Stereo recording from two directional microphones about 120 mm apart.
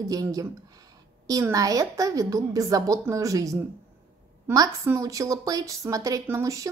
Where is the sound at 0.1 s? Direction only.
30° right (ahead or behind).